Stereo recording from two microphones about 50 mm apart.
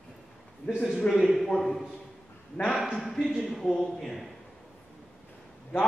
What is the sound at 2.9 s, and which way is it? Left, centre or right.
A man's voice, centre.